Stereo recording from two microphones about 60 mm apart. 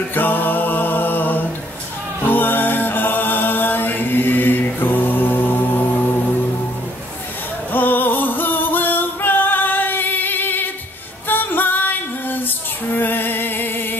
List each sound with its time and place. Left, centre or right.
0.1 s music: left
7.7 s music: left